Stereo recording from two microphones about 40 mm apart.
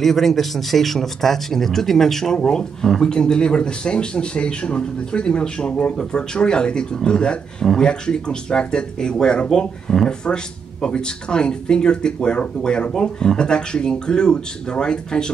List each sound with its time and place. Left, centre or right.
0.0 s speech: centre